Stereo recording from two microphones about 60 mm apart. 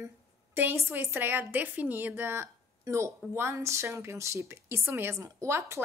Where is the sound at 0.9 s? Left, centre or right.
Right.